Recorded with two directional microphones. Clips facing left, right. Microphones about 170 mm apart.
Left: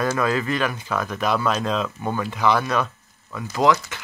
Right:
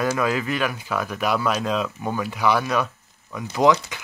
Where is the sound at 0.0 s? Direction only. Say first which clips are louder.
Even; 10° right (ahead or behind).